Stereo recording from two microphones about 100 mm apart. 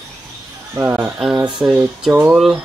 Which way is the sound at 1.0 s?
5° right (ahead or behind).